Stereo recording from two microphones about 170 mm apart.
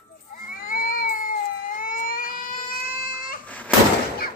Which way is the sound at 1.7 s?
55° left (ahead or behind).